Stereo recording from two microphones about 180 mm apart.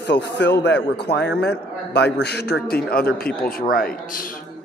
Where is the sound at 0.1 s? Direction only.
70° left (ahead or behind).